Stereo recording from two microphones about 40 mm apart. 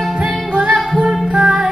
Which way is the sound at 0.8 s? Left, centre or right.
Centre.